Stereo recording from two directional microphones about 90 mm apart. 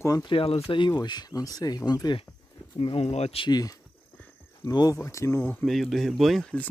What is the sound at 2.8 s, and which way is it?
Speech, 85° left.